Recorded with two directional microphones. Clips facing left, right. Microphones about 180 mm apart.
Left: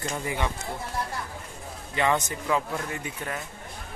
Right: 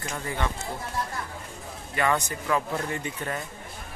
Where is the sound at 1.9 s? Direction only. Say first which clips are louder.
Left 1 dB; 20° left (ahead or behind).